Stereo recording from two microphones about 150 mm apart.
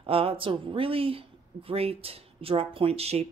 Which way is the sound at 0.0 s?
40° right (ahead or behind).